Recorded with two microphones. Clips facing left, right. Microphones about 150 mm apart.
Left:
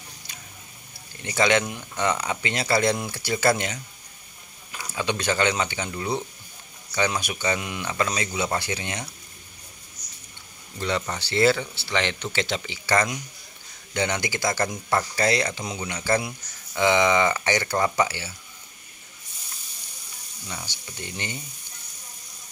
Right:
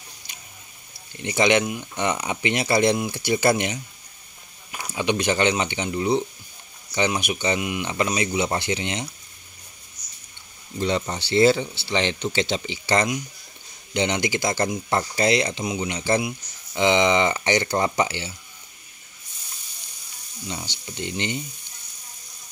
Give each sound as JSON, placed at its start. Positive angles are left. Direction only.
{"t": 1.2, "sound": "speech", "side_deg": -20}
{"t": 4.9, "sound": "speech", "side_deg": -20}
{"t": 10.8, "sound": "speech", "side_deg": -20}
{"t": 20.4, "sound": "speech", "side_deg": -25}